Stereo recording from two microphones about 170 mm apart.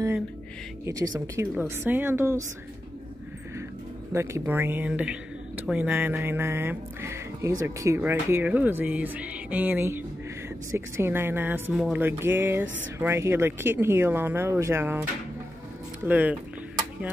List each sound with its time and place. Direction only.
1.2 s speech: 15° right (ahead or behind)
4.1 s speech: 15° right (ahead or behind)